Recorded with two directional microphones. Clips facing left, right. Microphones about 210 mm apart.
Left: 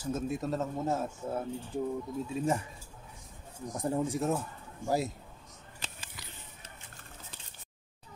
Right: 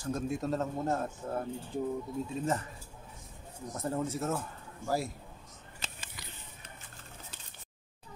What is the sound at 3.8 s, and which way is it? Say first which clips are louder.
Speech: left 3 dB; 15° left (ahead or behind).